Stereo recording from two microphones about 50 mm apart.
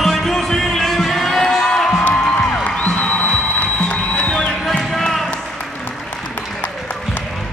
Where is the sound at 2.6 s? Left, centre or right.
Left.